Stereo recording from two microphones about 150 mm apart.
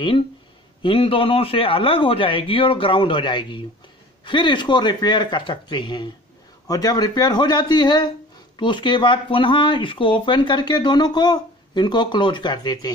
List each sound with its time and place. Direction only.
0.8 s a man's voice: 35° left (ahead or behind)